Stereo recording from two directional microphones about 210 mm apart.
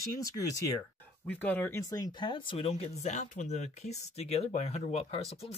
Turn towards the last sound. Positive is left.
turn(degrees=30)  # may be behind; listen again after turning